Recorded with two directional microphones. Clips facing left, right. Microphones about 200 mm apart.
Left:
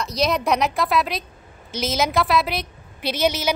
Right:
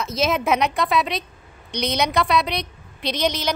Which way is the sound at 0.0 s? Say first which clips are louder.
Even; centre (ahead or behind).